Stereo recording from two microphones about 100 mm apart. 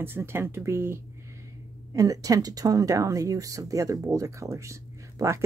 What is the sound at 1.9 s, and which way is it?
Speech, 35° right (ahead or behind).